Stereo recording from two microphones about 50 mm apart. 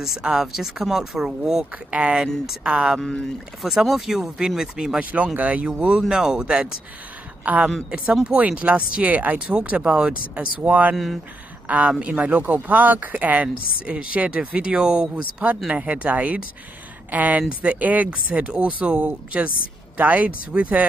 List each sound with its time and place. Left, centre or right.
0.2 s speech: centre
3.8 s speech: centre
4.9 s speech: right
5.7 s speech: centre
7.5 s speech: right
7.9 s speech: right